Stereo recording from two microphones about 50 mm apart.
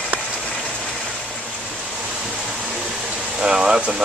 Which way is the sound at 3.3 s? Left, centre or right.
Centre.